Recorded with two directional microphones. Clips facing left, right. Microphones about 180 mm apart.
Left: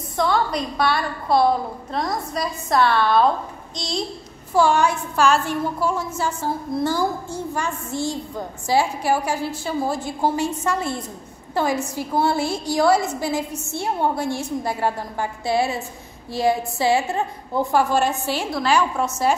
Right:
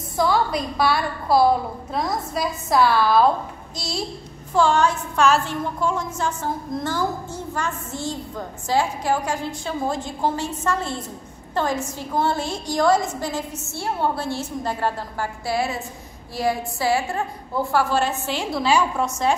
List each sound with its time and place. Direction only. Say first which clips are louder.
0.2 s a woman's voice: even; centre (ahead or behind)
4.6 s a woman's voice: left 1 dB; 10° left (ahead or behind)
18.5 s a woman's voice: right 1 dB; 5° right (ahead or behind)